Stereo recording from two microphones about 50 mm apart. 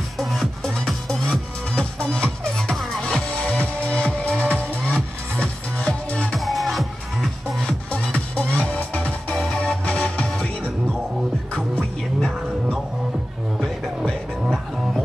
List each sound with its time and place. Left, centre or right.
0.2 s music: centre
1.8 s music: left
2.7 s music: centre
3.0 s music: centre
6.3 s music: centre
7.9 s music: left
9.3 s music: centre
9.6 s music: left